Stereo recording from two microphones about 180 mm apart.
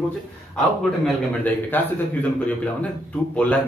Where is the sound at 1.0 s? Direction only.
10° left (ahead or behind).